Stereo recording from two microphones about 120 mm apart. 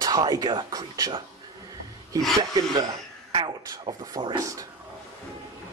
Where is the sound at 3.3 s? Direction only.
40° right (ahead or behind).